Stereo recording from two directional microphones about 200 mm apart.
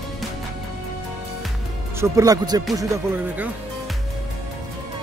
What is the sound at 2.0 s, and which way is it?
Speech, 15° right (ahead or behind).